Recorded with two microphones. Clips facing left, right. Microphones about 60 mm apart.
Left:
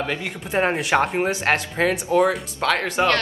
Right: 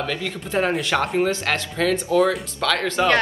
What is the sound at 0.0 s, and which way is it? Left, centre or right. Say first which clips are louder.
Speech: even; left.